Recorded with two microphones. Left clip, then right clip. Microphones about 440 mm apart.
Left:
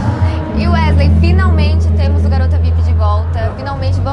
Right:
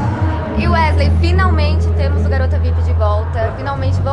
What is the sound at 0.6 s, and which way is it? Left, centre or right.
A woman's voice, centre.